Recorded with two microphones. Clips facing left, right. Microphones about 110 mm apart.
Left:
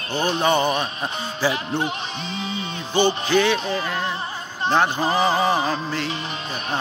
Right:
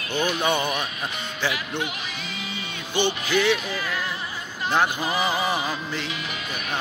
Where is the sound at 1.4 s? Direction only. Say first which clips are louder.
Left 5 dB; 35° left (ahead or behind).